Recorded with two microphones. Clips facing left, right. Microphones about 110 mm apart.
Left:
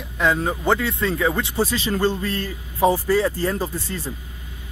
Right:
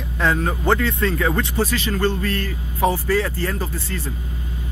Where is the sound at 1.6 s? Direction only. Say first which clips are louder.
Left 2 dB; 20° left (ahead or behind).